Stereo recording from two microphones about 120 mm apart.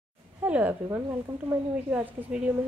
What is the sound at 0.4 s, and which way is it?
A woman's voice, 15° right (ahead or behind).